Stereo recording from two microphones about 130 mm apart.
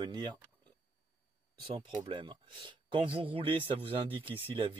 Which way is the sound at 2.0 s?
40° right (ahead or behind).